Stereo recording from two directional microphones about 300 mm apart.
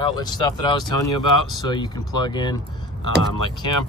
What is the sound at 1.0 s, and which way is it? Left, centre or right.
Speech, left.